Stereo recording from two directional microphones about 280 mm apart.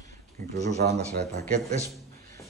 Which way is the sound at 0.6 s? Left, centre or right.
Right.